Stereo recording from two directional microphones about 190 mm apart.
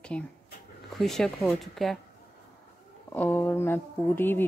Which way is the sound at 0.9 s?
Centre (ahead or behind).